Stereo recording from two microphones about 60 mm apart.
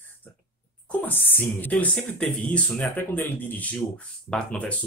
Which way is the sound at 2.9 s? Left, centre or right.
Left.